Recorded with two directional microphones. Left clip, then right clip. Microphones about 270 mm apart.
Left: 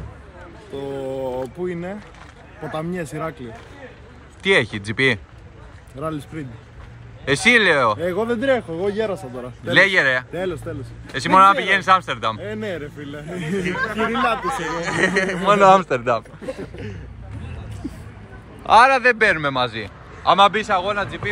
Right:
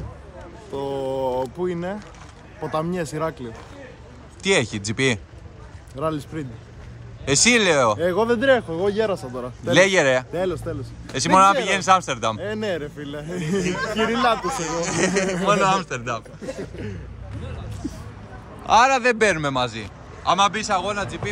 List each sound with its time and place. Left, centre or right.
1.0 s a sound: centre
3.0 s a man's voice: centre
4.5 s speech: centre
6.0 s a man's voice: centre
7.2 s speech: centre
8.1 s a man's voice: centre
9.7 s speech: right
10.4 s a man's voice: centre
11.1 s speech: right
12.4 s a man's voice: centre
12.7 s a man's voice: right; by 16.3 s centre
17.8 s vehicle: right
18.6 s a man's voice: centre